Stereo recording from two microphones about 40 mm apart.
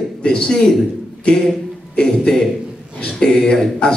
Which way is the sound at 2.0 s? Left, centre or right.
Centre.